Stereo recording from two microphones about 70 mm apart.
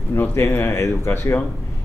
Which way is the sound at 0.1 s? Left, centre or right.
Left.